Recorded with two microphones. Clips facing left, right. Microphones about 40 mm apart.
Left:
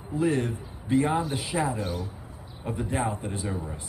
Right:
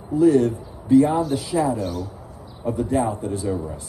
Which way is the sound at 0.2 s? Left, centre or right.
Left.